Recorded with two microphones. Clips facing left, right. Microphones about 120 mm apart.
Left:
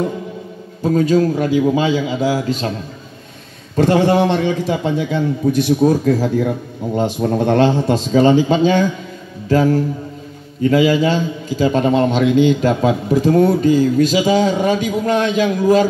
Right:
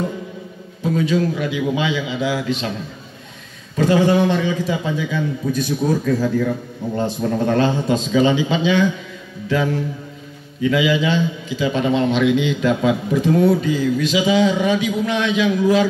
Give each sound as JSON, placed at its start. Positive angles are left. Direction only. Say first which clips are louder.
{"t": 0.8, "sound": "a man's voice", "louder": "left 5 dB", "side_deg": 40}
{"t": 3.7, "sound": "a man's voice", "louder": "left 2 dB", "side_deg": 60}
{"t": 8.1, "sound": "a man's voice", "louder": "left 5 dB", "side_deg": 45}